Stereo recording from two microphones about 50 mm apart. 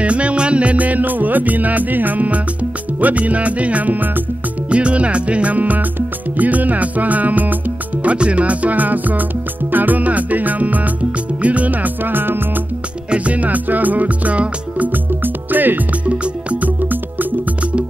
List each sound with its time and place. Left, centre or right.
0.0 s music: right
4.6 s music: right
8.0 s speech: right
9.7 s music: right
13.1 s music: right
15.2 s music: right